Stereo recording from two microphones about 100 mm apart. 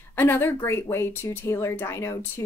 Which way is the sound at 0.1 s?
20° left (ahead or behind).